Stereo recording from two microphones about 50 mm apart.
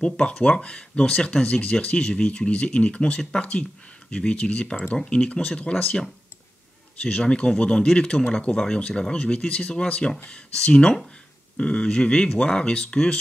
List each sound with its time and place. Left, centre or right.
0.0 s speech: centre